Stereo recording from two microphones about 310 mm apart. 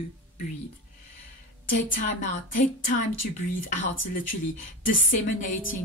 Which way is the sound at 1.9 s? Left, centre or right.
Left.